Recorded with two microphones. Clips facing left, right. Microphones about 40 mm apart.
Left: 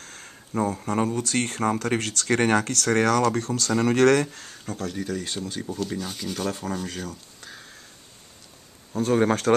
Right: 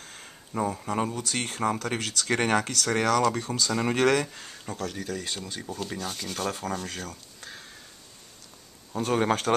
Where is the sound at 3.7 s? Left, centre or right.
Centre.